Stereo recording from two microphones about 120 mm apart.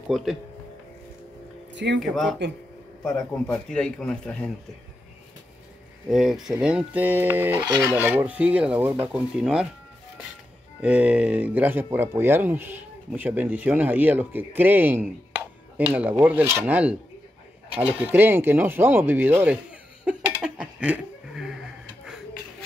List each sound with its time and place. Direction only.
0.1 s speech: centre (ahead or behind)
3.0 s a man's voice: 5° left (ahead or behind)
6.0 s speech: 5° right (ahead or behind)
10.8 s speech: 10° right (ahead or behind)
17.6 s a sound: 55° right (ahead or behind)
18.0 s a sound: 15° right (ahead or behind)